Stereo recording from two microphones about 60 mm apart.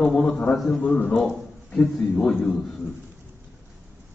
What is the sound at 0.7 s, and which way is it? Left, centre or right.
A man's voice, left.